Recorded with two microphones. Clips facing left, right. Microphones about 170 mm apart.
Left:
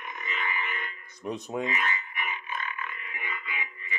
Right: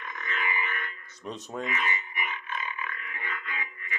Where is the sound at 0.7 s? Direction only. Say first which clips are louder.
Even; 15° left (ahead or behind).